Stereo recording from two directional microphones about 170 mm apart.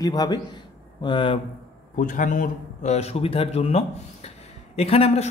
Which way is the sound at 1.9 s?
50° left (ahead or behind).